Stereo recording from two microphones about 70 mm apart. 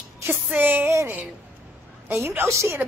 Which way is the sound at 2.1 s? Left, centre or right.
Right.